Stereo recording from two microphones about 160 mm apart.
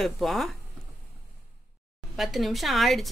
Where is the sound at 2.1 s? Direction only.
Centre (ahead or behind).